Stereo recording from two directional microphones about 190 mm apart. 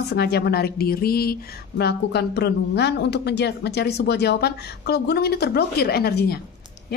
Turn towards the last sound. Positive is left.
turn(degrees=55)  # may be behind; listen again after turning